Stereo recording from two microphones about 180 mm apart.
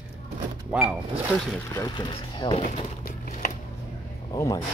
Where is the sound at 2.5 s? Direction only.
40° left (ahead or behind).